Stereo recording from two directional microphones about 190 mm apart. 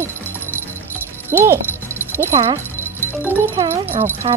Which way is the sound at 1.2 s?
10° right (ahead or behind).